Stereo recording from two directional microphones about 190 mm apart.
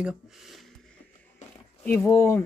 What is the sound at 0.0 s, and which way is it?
Speech, centre (ahead or behind).